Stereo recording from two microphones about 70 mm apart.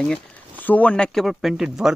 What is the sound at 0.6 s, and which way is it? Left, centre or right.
Speech, left.